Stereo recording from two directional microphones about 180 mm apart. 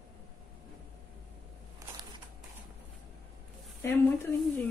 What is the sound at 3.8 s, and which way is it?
Speech, 15° left (ahead or behind).